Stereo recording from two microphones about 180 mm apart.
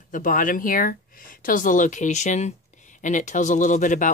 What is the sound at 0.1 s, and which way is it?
Speech, 45° left (ahead or behind).